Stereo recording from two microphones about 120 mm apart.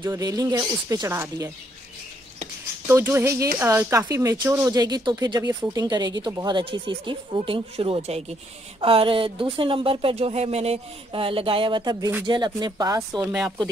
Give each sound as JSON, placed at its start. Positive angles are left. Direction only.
{"t": 0.1, "sound": "speech", "side_deg": -30}
{"t": 2.9, "sound": "speech", "side_deg": -20}